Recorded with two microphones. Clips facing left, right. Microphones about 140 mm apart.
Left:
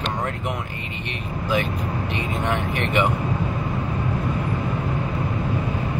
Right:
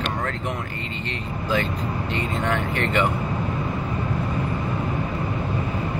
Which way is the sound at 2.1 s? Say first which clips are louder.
Right 1 dB; 15° left (ahead or behind).